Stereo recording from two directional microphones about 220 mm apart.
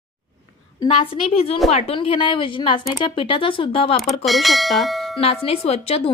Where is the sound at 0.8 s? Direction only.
25° left (ahead or behind).